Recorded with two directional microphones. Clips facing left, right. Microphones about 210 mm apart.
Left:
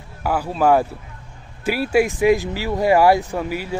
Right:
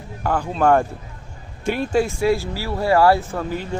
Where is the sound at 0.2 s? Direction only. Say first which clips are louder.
Even; 5° left (ahead or behind).